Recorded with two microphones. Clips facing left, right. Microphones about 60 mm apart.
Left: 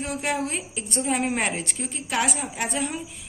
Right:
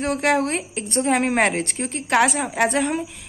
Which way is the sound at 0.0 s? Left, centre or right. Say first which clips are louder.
Right 7 dB; right.